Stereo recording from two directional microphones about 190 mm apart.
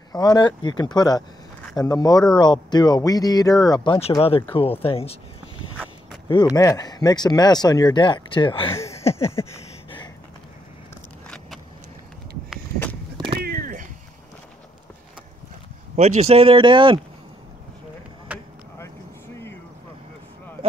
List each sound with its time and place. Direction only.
0.1 s speech: 20° left (ahead or behind)
6.5 s speech: 20° left (ahead or behind)
8.7 s a sound: 15° left (ahead or behind)
11.2 s vehicle: 5° left (ahead or behind)
13.4 s a sound: 50° right (ahead or behind)
16.0 s speech: 35° right (ahead or behind)
18.3 s vehicle: 5° right (ahead or behind)